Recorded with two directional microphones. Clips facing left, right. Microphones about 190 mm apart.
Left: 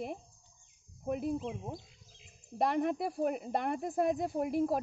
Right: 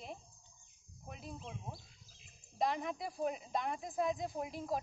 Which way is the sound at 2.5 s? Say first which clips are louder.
Left 6 dB; 60° left (ahead or behind).